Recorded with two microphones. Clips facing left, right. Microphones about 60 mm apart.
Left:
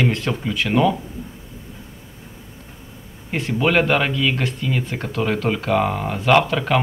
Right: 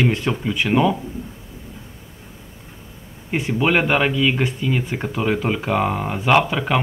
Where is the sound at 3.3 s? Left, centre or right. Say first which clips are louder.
Even; centre.